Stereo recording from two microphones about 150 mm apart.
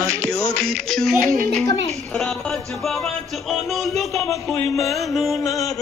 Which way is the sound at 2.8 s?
Centre (ahead or behind).